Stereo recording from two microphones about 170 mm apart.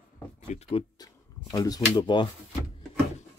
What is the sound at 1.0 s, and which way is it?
Speech, 20° left (ahead or behind).